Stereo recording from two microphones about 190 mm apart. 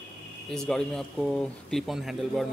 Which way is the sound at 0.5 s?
5° left (ahead or behind).